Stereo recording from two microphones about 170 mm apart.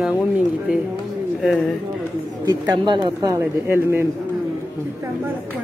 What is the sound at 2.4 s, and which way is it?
Speech, 25° right (ahead or behind).